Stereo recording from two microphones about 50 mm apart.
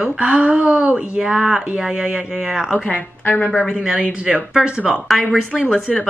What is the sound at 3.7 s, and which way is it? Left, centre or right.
Speech, right.